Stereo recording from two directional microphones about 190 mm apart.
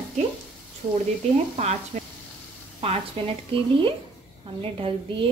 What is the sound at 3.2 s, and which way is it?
Speech, 30° right (ahead or behind).